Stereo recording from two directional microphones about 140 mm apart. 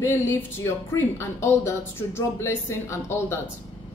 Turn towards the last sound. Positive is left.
turn(degrees=20)  # may be behind; listen again after turning